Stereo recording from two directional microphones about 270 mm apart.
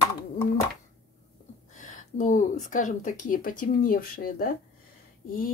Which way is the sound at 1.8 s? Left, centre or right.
Left.